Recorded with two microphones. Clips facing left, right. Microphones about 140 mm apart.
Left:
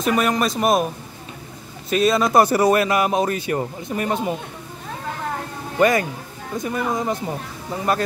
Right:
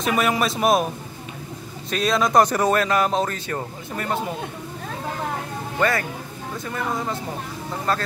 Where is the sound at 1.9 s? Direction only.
5° left (ahead or behind).